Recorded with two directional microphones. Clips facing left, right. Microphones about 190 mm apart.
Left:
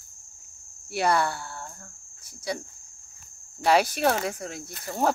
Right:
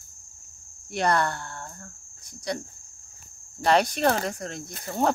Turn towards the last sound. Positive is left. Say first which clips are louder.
# right 1 dB
turn(degrees=5)  # may be behind; listen again after turning